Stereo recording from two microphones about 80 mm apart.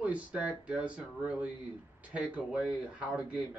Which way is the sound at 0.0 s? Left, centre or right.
Centre.